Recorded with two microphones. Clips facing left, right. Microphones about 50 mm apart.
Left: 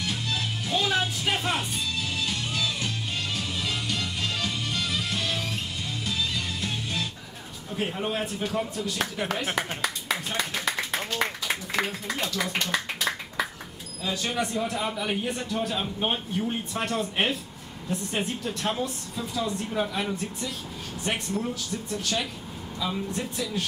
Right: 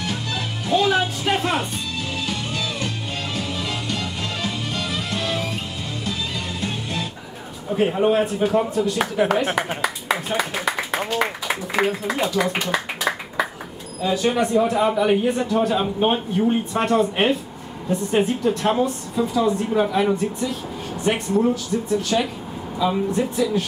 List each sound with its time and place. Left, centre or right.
0.0 s music: centre
6.6 s music: centre
7.7 s speech: centre